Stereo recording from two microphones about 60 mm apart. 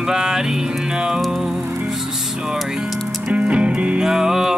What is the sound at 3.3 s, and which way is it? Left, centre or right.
Music, centre.